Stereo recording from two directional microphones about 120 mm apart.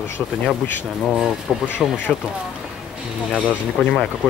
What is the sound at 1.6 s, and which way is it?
Speech, 15° left (ahead or behind).